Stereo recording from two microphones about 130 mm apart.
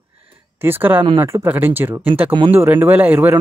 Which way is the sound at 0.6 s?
15° right (ahead or behind).